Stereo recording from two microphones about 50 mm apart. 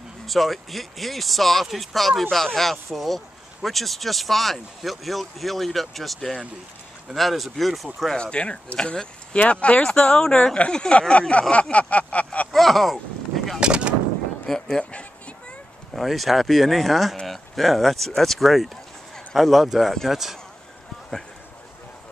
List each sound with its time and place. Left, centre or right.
0.3 s speech: centre
8.2 s speech: left
12.5 s speech: centre
13.6 s a sound: centre
14.5 s speech: centre
14.9 s a sound: left
15.9 s speech: centre